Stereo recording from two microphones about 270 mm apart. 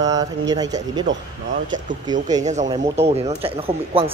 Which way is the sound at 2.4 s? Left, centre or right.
Right.